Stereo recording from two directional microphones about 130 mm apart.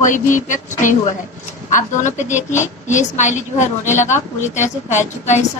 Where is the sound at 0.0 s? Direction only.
80° left.